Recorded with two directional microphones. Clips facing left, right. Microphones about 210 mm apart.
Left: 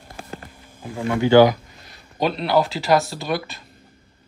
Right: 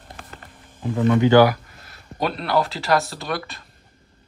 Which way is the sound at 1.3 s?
15° left (ahead or behind).